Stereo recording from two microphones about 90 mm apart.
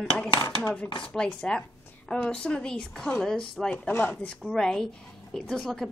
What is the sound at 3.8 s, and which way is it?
Speech, 20° left (ahead or behind).